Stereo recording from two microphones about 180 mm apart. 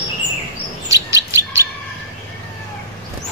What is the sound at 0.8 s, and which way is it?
Chirp, 15° right (ahead or behind).